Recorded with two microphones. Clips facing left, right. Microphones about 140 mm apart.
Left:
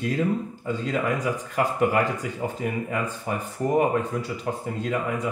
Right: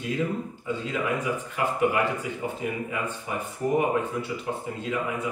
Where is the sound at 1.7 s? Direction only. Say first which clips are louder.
Even; 40° left (ahead or behind).